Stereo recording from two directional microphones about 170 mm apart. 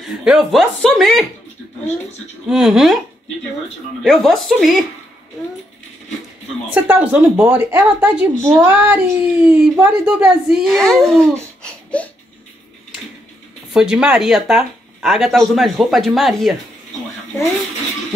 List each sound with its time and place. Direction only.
0.2 s speech: 5° right (ahead or behind)
2.5 s speech: centre (ahead or behind)
4.0 s speech: centre (ahead or behind)
6.7 s a woman's voice: 10° right (ahead or behind)
11.6 s a sound: 5° left (ahead or behind)
13.7 s speech: 5° right (ahead or behind)